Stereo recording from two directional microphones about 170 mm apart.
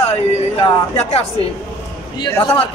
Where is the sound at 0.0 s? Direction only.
40° left (ahead or behind).